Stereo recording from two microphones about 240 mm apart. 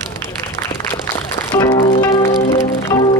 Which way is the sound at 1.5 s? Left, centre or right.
Centre.